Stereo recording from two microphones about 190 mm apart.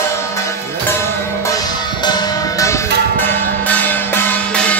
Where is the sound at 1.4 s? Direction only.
20° left (ahead or behind).